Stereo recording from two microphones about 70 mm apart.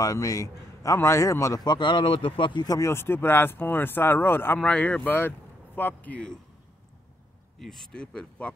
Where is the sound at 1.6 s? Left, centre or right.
Left.